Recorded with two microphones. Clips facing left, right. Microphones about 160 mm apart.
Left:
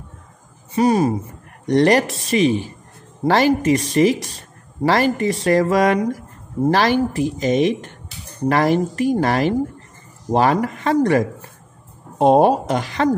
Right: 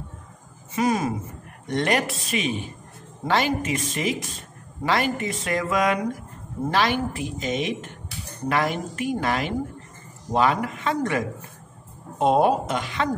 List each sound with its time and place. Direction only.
0.7 s speech: 35° left (ahead or behind)